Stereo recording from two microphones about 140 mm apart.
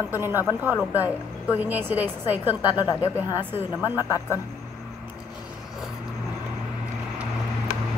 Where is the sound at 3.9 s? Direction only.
20° left (ahead or behind).